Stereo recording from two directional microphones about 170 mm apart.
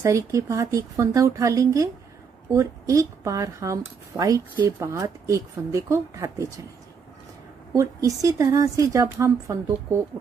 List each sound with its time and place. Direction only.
0.0 s a woman's voice: 15° right (ahead or behind)
7.7 s a woman's voice: 20° right (ahead or behind)